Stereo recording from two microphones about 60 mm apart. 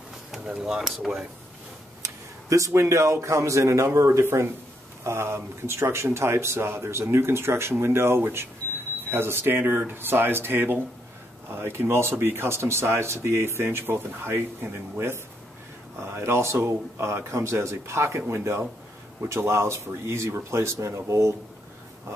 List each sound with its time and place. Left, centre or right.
0.6 s speech: centre
2.0 s speech: right